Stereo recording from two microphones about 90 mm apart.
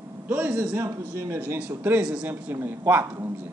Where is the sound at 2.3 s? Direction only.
25° right (ahead or behind).